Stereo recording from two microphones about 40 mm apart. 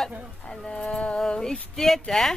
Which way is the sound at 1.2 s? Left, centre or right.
Centre.